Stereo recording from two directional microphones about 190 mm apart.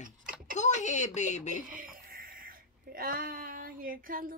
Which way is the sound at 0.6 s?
40° left (ahead or behind).